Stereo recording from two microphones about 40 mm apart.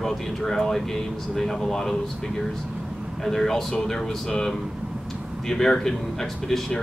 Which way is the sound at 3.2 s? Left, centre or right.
Centre.